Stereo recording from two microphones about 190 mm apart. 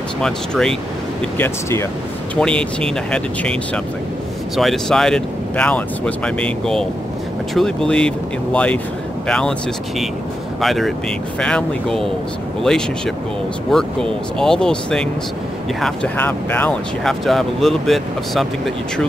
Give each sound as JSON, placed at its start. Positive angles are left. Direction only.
{"t": 0.2, "sound": "speech", "side_deg": 5}
{"t": 1.4, "sound": "speech", "side_deg": 15}